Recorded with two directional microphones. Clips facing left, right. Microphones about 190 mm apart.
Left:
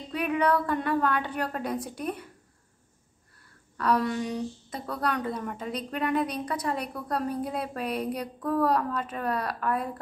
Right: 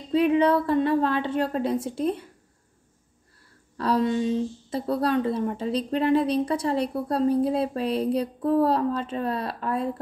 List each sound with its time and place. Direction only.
0.1 s speech: 25° right (ahead or behind)
3.7 s speech: 30° right (ahead or behind)